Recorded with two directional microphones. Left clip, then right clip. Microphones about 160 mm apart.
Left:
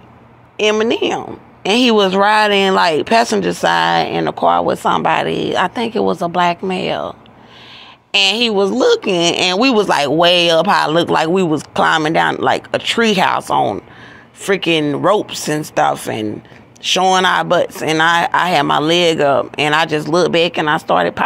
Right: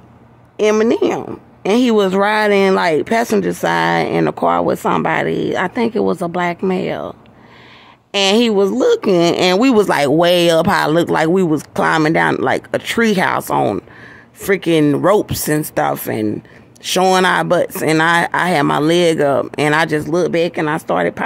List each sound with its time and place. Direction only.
0.6 s a woman's voice: 30° right (ahead or behind); by 13.8 s 55° right (ahead or behind)
14.4 s a woman's voice: 35° right (ahead or behind)